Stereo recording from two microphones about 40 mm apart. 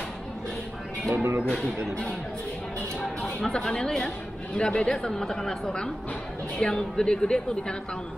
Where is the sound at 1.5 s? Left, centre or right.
Left.